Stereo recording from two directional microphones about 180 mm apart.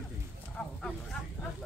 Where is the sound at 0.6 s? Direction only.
5° left (ahead or behind).